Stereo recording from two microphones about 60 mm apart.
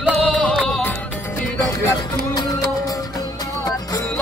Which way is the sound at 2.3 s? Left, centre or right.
Left.